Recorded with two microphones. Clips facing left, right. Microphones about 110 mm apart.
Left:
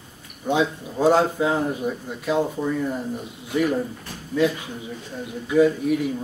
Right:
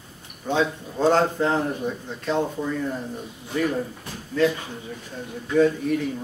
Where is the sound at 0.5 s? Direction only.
10° left (ahead or behind).